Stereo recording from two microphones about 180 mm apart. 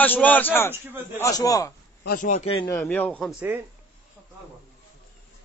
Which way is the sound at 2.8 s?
10° left (ahead or behind).